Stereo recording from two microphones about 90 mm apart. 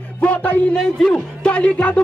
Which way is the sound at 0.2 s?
15° left (ahead or behind).